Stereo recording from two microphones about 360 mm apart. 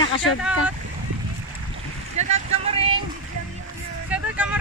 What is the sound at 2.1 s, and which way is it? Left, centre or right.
Vehicle, centre.